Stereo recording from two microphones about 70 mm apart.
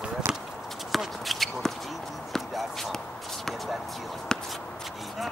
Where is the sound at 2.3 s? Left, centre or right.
Centre.